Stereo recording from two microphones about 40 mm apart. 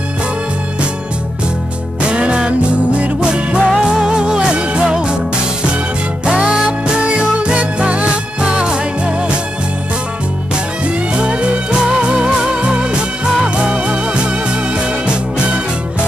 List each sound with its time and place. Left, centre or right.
2.0 s music: right
3.7 s music: centre
6.2 s music: right
10.9 s music: right